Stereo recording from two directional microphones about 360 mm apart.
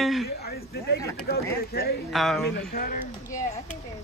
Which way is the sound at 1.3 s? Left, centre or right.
Left.